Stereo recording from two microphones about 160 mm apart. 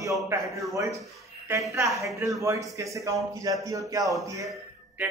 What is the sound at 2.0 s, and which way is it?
A man's voice, 20° right (ahead or behind).